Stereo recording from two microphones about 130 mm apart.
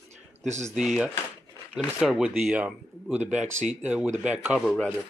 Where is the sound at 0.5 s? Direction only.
65° right (ahead or behind).